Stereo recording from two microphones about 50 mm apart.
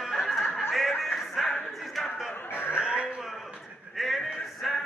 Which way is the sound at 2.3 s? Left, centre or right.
Left.